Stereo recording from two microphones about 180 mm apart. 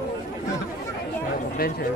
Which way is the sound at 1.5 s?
60° left (ahead or behind).